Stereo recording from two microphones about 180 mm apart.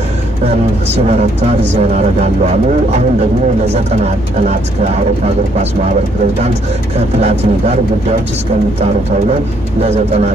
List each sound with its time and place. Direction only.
1.8 s speech: 35° right (ahead or behind)
7.2 s speech: 35° right (ahead or behind)
9.3 s speech: 35° right (ahead or behind)